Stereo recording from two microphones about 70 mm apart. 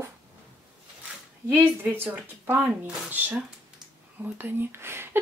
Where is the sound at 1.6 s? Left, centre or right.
Right.